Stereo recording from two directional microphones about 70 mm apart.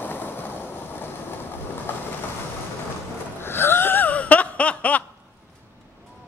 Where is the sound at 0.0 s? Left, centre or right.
Left.